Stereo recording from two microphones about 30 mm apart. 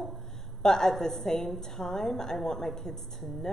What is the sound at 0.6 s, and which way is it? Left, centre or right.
A woman's voice, centre.